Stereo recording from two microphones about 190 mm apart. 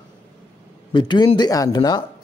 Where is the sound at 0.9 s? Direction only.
25° left (ahead or behind).